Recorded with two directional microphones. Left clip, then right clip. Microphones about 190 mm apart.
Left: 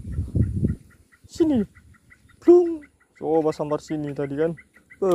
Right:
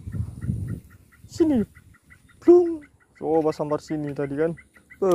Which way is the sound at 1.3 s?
Centre (ahead or behind).